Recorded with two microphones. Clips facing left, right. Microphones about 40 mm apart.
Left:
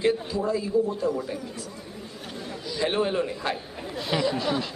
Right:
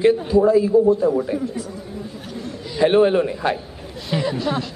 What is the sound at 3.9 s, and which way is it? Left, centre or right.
Speech, centre.